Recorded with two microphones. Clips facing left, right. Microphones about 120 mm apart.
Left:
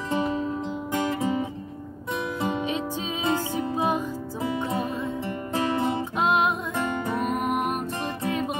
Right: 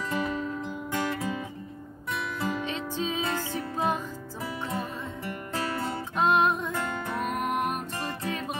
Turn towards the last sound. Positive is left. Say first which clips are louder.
# left 3 dB
turn(degrees=10)  # may be behind; listen again after turning